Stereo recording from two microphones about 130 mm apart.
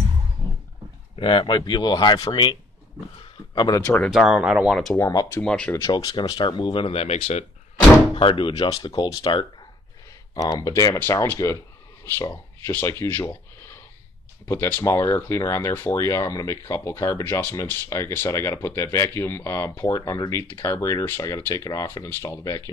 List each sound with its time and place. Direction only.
1.1 s speech: 40° left (ahead or behind)
3.5 s speech: 30° left (ahead or behind)
3.8 s speech: 10° left (ahead or behind)
4.1 s speech: 5° right (ahead or behind)
4.9 s speech: 25° left (ahead or behind)
5.4 s speech: 10° left (ahead or behind)
5.8 s speech: 30° left (ahead or behind); by 7.4 s 55° left (ahead or behind)
8.2 s speech: 40° left (ahead or behind); by 13.3 s 25° left (ahead or behind)
14.5 s speech: 20° left (ahead or behind)